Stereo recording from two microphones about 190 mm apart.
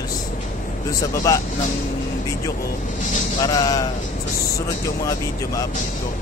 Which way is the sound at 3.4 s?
20° left (ahead or behind).